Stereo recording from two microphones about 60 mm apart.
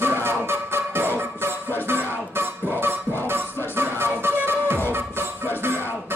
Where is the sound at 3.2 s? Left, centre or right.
Right.